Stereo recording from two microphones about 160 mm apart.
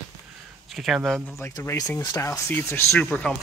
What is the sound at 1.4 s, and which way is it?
Speech, 15° left (ahead or behind).